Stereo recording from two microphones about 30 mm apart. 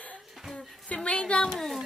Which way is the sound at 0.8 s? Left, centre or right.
Left.